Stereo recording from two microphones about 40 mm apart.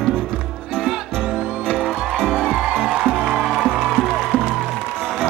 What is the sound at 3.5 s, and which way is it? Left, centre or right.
Music, right.